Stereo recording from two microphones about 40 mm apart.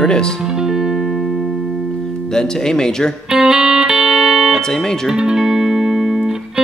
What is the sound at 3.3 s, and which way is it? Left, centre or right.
Music, centre.